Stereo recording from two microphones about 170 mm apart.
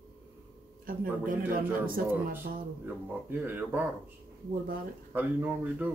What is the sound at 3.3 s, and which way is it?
Speech, 10° right (ahead or behind).